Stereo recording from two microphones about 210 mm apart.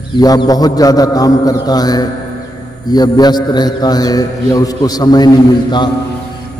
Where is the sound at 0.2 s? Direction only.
15° left (ahead or behind).